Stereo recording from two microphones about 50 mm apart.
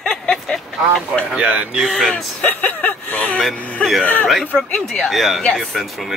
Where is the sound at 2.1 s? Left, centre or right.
Left.